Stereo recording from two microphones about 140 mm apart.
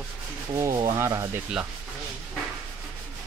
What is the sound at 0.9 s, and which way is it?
Speech, 20° right (ahead or behind).